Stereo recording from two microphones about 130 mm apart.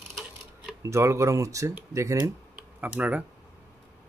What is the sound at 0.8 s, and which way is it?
Speech, 20° right (ahead or behind).